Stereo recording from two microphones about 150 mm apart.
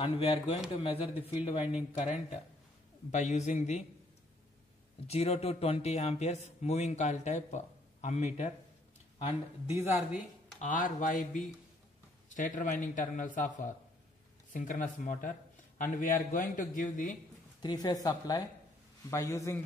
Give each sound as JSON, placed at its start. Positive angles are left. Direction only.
{"t": 0.0, "sound": "speech", "side_deg": 40}
{"t": 1.6, "sound": "speech", "side_deg": -10}
{"t": 2.0, "sound": "a man's voice", "side_deg": 50}
{"t": 5.0, "sound": "a man's voice", "side_deg": 45}
{"t": 9.9, "sound": "speech", "side_deg": 0}
{"t": 10.6, "sound": "a man's voice", "side_deg": 60}
{"t": 17.6, "sound": "speech", "side_deg": 30}